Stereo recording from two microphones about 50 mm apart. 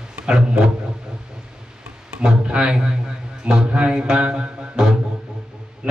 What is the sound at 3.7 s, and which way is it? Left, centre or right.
Music, right.